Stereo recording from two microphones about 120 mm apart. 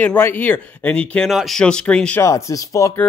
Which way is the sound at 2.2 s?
25° left (ahead or behind).